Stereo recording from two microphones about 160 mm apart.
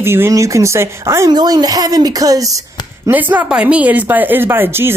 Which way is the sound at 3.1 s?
10° right (ahead or behind).